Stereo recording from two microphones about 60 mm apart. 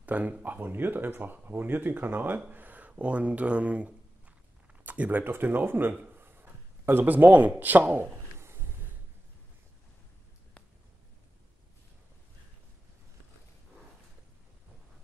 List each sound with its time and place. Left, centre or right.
0.0 s speech: right
5.2 s speech: right
6.1 s a sound: right
7.2 s speech: right